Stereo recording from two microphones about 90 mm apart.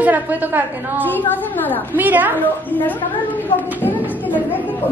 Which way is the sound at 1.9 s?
20° right (ahead or behind).